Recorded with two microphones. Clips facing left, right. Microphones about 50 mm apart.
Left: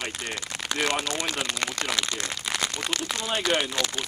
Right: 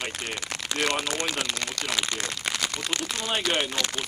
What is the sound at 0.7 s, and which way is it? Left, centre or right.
Speech, centre.